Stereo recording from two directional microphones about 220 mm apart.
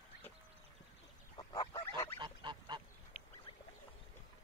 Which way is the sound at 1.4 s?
20° left (ahead or behind).